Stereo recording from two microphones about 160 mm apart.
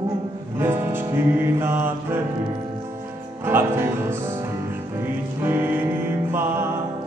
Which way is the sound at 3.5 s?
15° right (ahead or behind).